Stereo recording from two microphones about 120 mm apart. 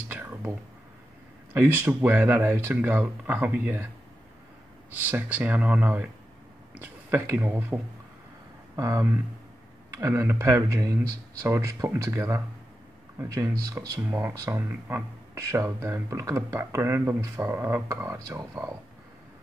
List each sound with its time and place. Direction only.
0.1 s a sound: 15° right (ahead or behind)
1.5 s speech: 20° right (ahead or behind)
4.9 s a man's voice: 15° right (ahead or behind)